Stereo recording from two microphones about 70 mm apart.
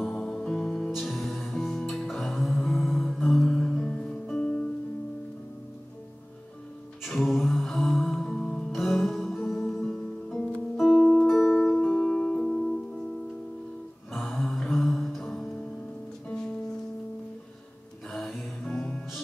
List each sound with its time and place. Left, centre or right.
0.0 s music: centre
2.6 s singing bowl: centre
3.4 s music: centre
7.2 s music: centre
8.3 s music: centre
8.7 s music: centre
12.0 s music: centre
14.1 s music: centre
18.1 s music: centre